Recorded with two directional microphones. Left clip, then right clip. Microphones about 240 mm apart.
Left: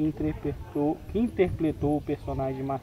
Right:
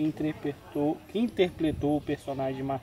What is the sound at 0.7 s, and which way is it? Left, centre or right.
Speech, centre.